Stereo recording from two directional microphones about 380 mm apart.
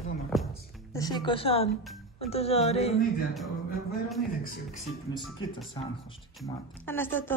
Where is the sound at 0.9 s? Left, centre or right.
Centre.